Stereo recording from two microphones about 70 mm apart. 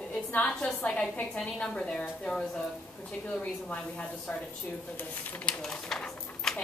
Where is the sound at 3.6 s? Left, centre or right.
Centre.